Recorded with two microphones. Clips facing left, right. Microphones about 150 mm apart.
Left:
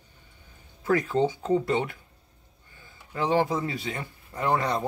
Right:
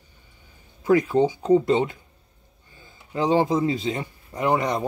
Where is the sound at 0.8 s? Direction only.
15° right (ahead or behind).